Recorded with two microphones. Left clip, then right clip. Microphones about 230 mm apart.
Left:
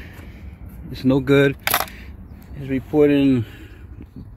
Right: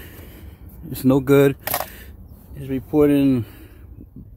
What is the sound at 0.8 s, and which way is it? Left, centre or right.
Speech, right.